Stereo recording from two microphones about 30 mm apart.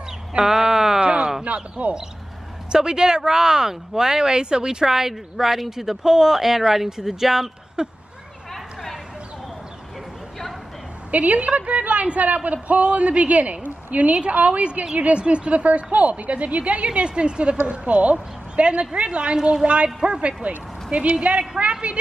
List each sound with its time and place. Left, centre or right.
0.4 s speech: centre
1.0 s a sound: right
1.4 s a woman's voice: right
2.7 s speech: right
4.3 s speech: right; by 7.5 s centre
7.8 s speech: right
11.1 s a woman's voice: right
15.6 s a woman's voice: right